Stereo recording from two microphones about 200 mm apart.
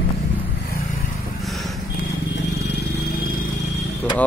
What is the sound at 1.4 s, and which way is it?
Vehicle, centre (ahead or behind).